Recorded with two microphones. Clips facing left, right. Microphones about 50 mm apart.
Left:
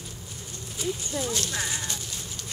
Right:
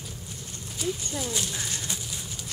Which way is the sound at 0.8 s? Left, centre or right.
Centre.